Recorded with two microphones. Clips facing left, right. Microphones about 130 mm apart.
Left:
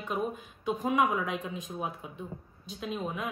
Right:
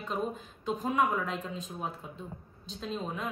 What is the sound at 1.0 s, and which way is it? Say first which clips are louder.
Speech: right 1 dB; 65° left (ahead or behind).